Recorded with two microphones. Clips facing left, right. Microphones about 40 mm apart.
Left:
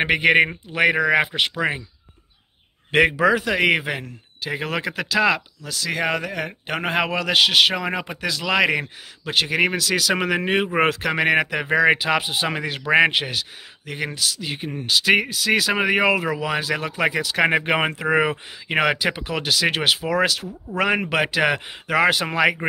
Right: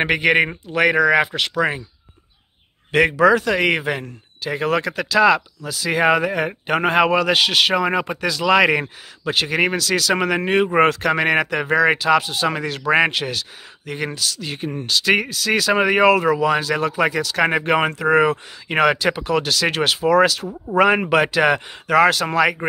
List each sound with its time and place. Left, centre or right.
0.0 s speech: centre
2.9 s speech: left
3.2 s speech: centre
5.6 s a man's voice: centre